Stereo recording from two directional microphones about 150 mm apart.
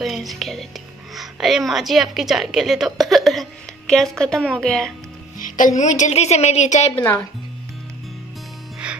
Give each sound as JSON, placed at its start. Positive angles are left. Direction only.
{"t": 0.0, "sound": "a woman's voice", "side_deg": 0}
{"t": 5.4, "sound": "a woman's voice", "side_deg": 60}
{"t": 7.0, "sound": "speech", "side_deg": 10}
{"t": 8.8, "sound": "mechanisms", "side_deg": -5}